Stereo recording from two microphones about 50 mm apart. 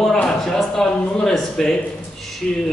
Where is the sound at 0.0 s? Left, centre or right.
Centre.